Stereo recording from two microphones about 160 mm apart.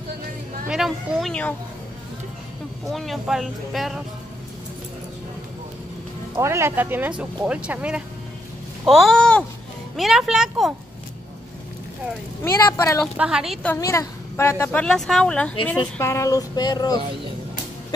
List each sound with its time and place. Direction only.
0.7 s speech: centre (ahead or behind)
2.9 s speech: centre (ahead or behind)
6.3 s speech: 15° right (ahead or behind)
12.6 s a woman's voice: 15° left (ahead or behind)
13.2 s speech: 5° right (ahead or behind)
13.7 s a woman's voice: 20° left (ahead or behind)
16.0 s a sound: 20° left (ahead or behind)